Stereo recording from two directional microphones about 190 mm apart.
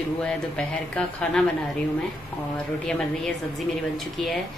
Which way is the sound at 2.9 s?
5° left (ahead or behind).